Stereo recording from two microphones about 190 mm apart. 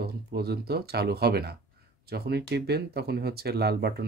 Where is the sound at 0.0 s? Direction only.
55° right (ahead or behind).